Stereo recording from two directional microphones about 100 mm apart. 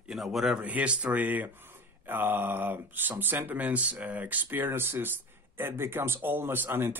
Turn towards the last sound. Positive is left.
turn(degrees=-25)  # may be behind; listen again after turning